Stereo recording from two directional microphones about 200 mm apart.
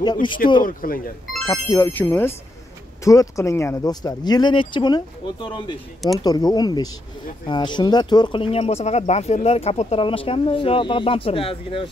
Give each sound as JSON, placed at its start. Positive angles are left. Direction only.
{"t": 0.0, "sound": "speech", "side_deg": 20}
{"t": 0.7, "sound": "speech", "side_deg": 45}
{"t": 1.4, "sound": "speech", "side_deg": 20}